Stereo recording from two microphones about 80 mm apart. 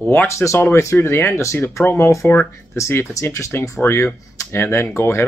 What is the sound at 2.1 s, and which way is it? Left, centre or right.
Speech, left.